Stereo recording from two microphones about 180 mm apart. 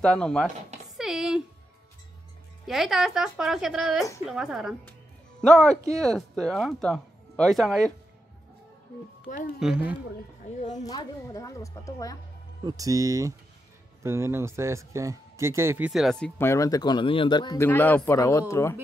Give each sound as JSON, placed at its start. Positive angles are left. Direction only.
{"t": 0.0, "sound": "speech", "side_deg": 5}
{"t": 0.9, "sound": "a sound", "side_deg": 0}
{"t": 2.6, "sound": "speech", "side_deg": 0}
{"t": 9.3, "sound": "speech", "side_deg": 40}
{"t": 10.8, "sound": "a woman's voice", "side_deg": 20}
{"t": 12.6, "sound": "speech", "side_deg": -20}
{"t": 15.9, "sound": "speech", "side_deg": 0}
{"t": 16.3, "sound": "a woman's voice", "side_deg": 15}
{"t": 17.6, "sound": "a man's voice", "side_deg": 10}